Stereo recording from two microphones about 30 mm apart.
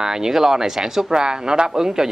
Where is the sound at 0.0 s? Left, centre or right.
Right.